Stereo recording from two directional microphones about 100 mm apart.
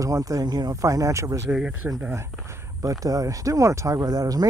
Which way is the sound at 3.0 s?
35° right (ahead or behind).